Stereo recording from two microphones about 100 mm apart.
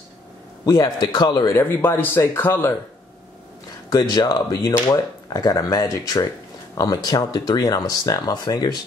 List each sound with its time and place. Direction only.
0.7 s speech: 40° left (ahead or behind)
1.5 s speech: 25° left (ahead or behind)
3.9 s speech: 40° left (ahead or behind)